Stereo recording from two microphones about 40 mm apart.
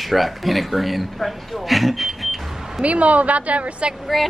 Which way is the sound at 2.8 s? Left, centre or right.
Right.